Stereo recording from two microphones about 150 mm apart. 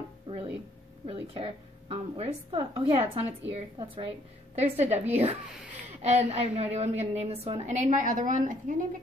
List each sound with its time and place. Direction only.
0.3 s music: 25° right (ahead or behind)
1.0 s speech: 40° right (ahead or behind); by 8.7 s 60° right (ahead or behind)